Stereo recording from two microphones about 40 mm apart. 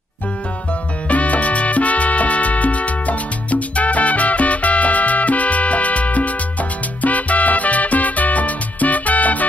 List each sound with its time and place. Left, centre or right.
1.0 s music: left